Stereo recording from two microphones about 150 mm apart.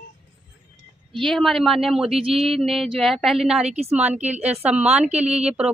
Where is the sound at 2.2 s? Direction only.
40° right (ahead or behind).